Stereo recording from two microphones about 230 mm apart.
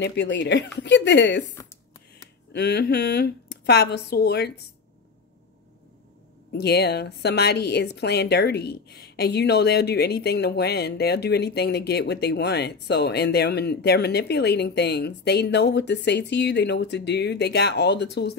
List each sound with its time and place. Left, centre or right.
0.0 s a woman's voice: left
2.5 s a woman's voice: left
6.5 s a woman's voice: left